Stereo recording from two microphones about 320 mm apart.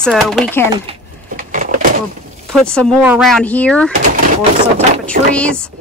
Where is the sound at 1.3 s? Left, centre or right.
Right.